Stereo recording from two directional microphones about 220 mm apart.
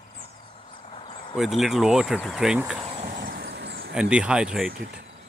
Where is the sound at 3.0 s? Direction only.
40° right (ahead or behind).